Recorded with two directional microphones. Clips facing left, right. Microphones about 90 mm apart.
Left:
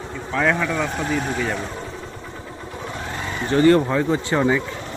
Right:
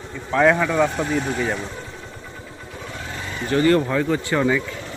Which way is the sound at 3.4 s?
30° left (ahead or behind).